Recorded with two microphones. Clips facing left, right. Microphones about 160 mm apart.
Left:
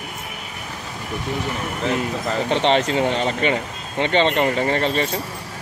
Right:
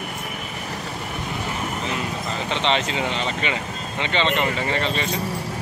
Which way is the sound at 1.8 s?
55° left (ahead or behind).